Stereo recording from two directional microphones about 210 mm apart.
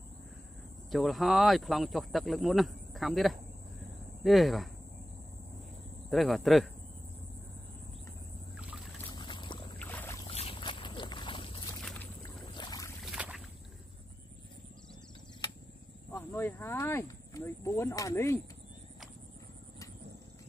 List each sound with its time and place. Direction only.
0.9 s speech: centre (ahead or behind)
6.0 s speech: centre (ahead or behind)
8.5 s boat: 5° right (ahead or behind)
9.1 s boat: 20° left (ahead or behind)
9.8 s boat: 10° left (ahead or behind)
10.2 s a sound: 25° left (ahead or behind)
12.5 s boat: 20° left (ahead or behind)
13.0 s boat: centre (ahead or behind)
16.1 s a sound: 10° left (ahead or behind)